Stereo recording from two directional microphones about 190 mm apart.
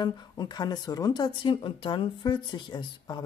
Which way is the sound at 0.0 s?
25° left (ahead or behind).